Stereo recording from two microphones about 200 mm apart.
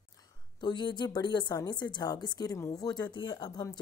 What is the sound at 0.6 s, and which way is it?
A woman's voice, 20° left (ahead or behind).